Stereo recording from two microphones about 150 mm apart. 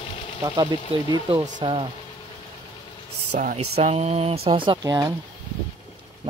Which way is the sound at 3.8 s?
45° right (ahead or behind).